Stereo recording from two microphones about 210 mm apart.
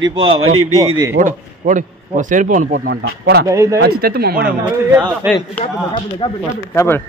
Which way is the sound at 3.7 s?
50° right (ahead or behind).